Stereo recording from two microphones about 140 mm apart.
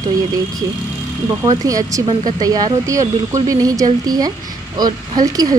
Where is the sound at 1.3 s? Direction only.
25° right (ahead or behind).